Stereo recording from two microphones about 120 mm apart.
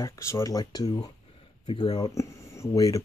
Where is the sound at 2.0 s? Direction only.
30° left (ahead or behind).